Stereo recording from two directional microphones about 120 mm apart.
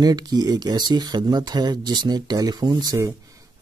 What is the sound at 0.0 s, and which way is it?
Speech, 35° right (ahead or behind).